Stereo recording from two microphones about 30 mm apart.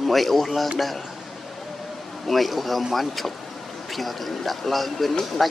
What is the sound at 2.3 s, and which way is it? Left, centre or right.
Speech, centre.